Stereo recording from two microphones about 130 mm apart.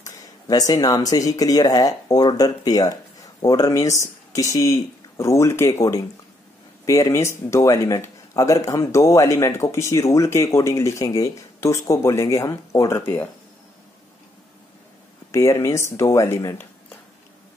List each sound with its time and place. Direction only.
0.0 s speech: 25° left (ahead or behind)
15.3 s speech: 20° left (ahead or behind)